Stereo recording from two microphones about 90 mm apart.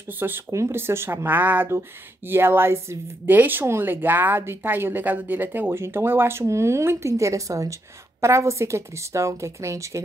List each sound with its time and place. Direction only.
0.5 s a woman's voice: 30° right (ahead or behind)